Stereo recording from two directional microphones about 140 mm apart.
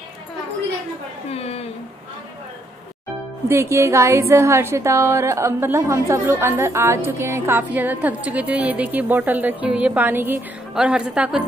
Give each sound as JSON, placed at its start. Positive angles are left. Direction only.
{"t": 1.3, "sound": "speech", "side_deg": 45}
{"t": 3.4, "sound": "a woman's voice", "side_deg": -20}